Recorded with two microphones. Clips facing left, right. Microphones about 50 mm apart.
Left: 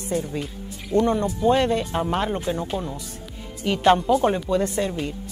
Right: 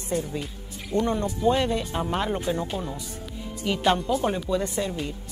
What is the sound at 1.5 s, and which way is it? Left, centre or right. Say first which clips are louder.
Speech: left 3 dB; left.